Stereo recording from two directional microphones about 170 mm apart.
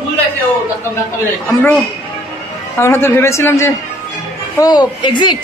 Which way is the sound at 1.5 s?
10° left (ahead or behind).